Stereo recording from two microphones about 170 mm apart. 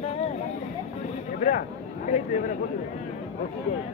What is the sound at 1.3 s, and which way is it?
Speech, 50° left (ahead or behind).